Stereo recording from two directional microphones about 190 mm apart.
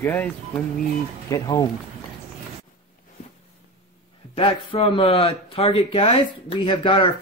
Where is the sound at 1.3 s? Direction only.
20° left (ahead or behind).